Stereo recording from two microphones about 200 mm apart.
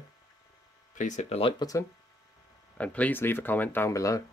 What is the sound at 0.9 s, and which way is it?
Speech, 35° left (ahead or behind).